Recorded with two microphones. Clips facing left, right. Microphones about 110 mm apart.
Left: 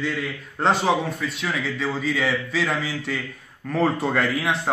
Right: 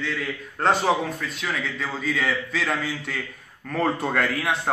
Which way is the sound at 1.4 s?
Centre (ahead or behind).